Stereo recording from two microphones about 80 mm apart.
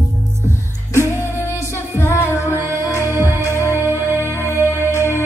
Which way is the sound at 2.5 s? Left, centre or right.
Right.